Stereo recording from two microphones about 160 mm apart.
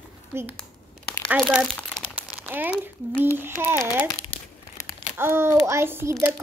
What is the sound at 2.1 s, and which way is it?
Crumpling, 10° right (ahead or behind).